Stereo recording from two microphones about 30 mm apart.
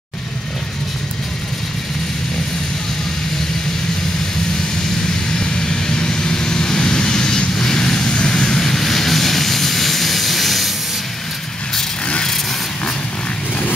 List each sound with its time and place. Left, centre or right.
5.4 s vehicle: left; by 10.7 s centre